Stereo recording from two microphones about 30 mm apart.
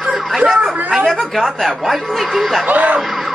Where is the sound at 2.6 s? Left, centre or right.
Right.